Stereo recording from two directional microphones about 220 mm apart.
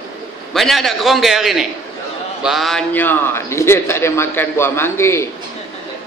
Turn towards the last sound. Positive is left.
turn(degrees=10)  # may be behind; listen again after turning